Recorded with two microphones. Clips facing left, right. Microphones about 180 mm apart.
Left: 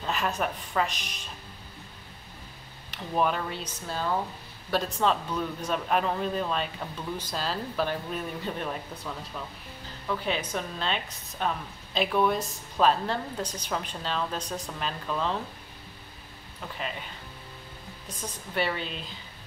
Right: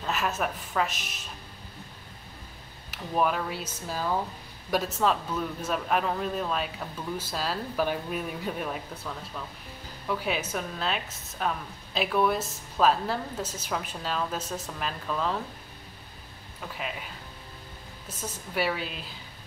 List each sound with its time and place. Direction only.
0.0 s speech: centre (ahead or behind)
2.9 s speech: 5° right (ahead or behind)
18.5 s speech: 5° right (ahead or behind)